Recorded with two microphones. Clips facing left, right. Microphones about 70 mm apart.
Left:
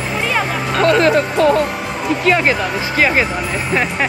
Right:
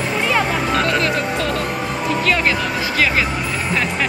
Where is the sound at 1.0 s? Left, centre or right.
Left.